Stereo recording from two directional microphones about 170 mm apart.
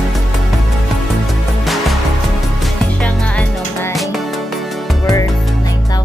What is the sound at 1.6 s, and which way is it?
Music, centre (ahead or behind).